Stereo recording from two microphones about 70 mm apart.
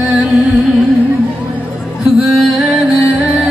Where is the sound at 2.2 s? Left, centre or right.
Centre.